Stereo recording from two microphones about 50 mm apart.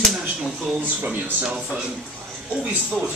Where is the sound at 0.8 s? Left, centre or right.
Right.